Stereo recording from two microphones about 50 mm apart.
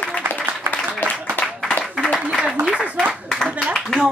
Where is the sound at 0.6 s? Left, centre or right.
Left.